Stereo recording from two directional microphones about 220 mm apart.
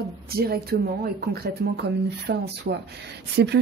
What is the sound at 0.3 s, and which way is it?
Speech, 45° right (ahead or behind).